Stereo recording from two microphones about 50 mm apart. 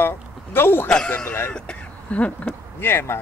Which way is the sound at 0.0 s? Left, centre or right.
Left.